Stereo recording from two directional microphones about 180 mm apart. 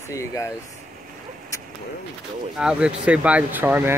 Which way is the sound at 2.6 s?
5° right (ahead or behind).